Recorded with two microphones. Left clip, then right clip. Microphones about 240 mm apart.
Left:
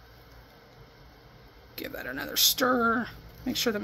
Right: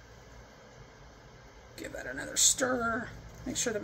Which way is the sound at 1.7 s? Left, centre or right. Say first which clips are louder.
Left 4 dB; left.